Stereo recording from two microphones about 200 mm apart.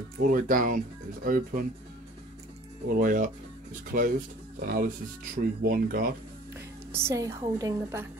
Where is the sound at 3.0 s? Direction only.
40° right (ahead or behind).